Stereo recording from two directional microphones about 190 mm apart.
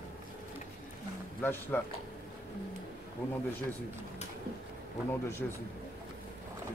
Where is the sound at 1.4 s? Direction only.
10° left (ahead or behind).